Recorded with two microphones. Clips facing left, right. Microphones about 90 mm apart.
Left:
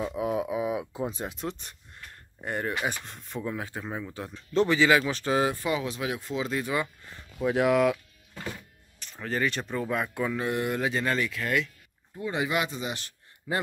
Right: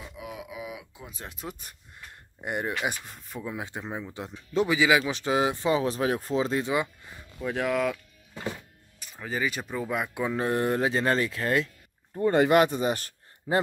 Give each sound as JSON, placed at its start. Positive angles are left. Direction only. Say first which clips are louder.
{"t": 0.0, "sound": "a sound", "louder": "left 12 dB", "side_deg": 45}
{"t": 1.3, "sound": "a sound", "louder": "left 4 dB", "side_deg": -5}
{"t": 2.8, "sound": "speech", "louder": "even", "side_deg": -15}
{"t": 3.1, "sound": "speech", "louder": "left 2 dB", "side_deg": -5}
{"t": 3.6, "sound": "speech", "louder": "even", "side_deg": -20}
{"t": 7.3, "sound": "speech", "louder": "left 4 dB", "side_deg": 5}
{"t": 9.0, "sound": "speech", "louder": "left 1 dB", "side_deg": -5}
{"t": 10.3, "sound": "speech", "louder": "right 6 dB", "side_deg": -35}
{"t": 12.3, "sound": "speech", "louder": "right 8 dB", "side_deg": -55}